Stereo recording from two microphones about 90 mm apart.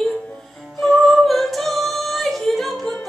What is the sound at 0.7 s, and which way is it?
Singing, 5° left (ahead or behind).